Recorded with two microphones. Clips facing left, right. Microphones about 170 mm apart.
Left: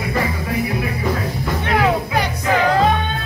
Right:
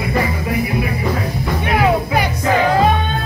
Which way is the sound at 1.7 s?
10° right (ahead or behind).